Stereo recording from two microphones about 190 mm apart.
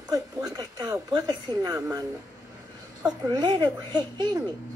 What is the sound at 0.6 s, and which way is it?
A woman's voice, 20° right (ahead or behind).